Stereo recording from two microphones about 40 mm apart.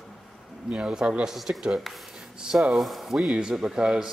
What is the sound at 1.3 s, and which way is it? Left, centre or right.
Speech, centre.